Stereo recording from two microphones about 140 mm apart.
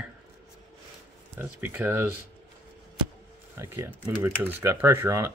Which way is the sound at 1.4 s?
15° right (ahead or behind).